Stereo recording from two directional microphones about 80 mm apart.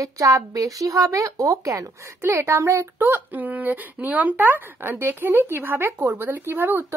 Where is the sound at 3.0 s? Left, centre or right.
Right.